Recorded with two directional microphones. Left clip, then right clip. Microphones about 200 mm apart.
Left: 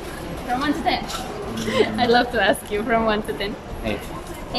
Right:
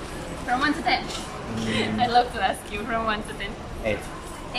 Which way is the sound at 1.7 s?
35° left (ahead or behind).